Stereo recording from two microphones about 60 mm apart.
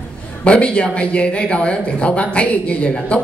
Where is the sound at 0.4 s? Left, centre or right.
Centre.